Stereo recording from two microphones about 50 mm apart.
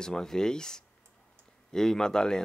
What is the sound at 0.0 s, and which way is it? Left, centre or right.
Speech, centre.